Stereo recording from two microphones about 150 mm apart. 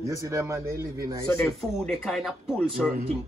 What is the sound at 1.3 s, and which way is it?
Speech, 15° left (ahead or behind).